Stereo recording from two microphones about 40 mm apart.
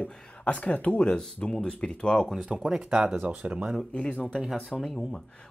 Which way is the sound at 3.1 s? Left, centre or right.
Right.